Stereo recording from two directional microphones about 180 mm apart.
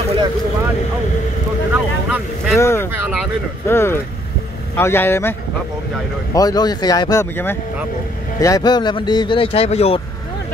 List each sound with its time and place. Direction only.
1.7 s vehicle: 10° right (ahead or behind)
2.6 s speech: 15° left (ahead or behind)
6.3 s speech: 20° left (ahead or behind)